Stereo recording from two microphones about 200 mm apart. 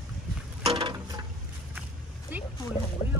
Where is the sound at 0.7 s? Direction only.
20° right (ahead or behind).